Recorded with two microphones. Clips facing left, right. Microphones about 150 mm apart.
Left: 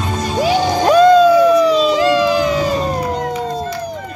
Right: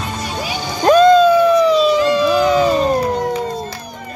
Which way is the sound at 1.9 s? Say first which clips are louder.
Left 1 dB; 90° left.